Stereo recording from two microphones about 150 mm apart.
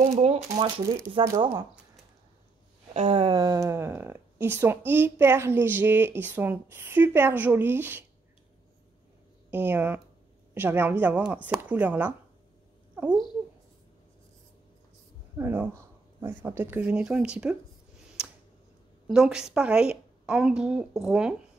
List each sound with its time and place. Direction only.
0.2 s speech: 40° right (ahead or behind)
0.8 s speech: 20° right (ahead or behind)
2.9 s speech: 40° right (ahead or behind); by 8.0 s 15° right (ahead or behind)
9.5 s speech: 15° right (ahead or behind)
15.3 s speech: 15° right (ahead or behind)
18.2 s a sound: 5° right (ahead or behind)
19.0 s speech: 5° right (ahead or behind)